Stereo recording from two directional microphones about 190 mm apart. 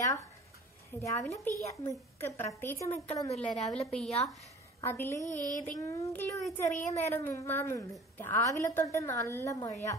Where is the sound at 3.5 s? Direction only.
Centre (ahead or behind).